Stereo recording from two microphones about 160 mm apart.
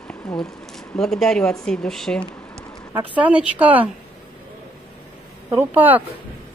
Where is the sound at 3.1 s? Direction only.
10° right (ahead or behind).